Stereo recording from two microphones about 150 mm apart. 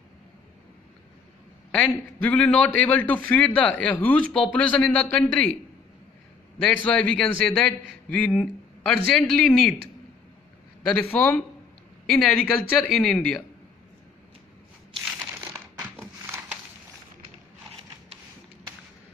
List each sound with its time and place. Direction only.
1.8 s a man's voice: 10° left (ahead or behind)
6.6 s a man's voice: 10° left (ahead or behind)
11.0 s a man's voice: 10° left (ahead or behind)
15.1 s crumpling: 15° right (ahead or behind)